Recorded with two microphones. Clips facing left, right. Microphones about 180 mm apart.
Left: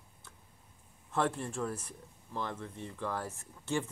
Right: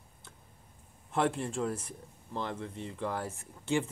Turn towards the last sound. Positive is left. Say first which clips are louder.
# right 4 dB
turn(degrees=-15)  # may be behind; listen again after turning